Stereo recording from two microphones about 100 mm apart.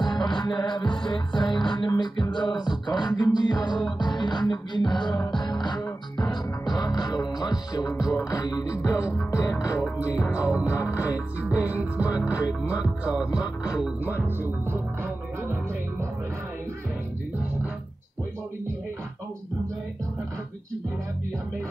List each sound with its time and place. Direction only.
0.0 s music: 45° left (ahead or behind)
13.0 s music: 10° right (ahead or behind)
14.6 s music: 25° right (ahead or behind)